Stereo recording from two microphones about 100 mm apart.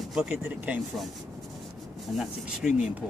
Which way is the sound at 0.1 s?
10° right (ahead or behind).